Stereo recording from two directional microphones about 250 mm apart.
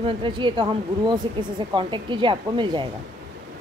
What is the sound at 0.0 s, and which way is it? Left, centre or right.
A woman's voice, centre.